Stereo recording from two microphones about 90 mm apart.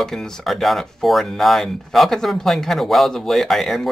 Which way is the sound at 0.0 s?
5° left (ahead or behind).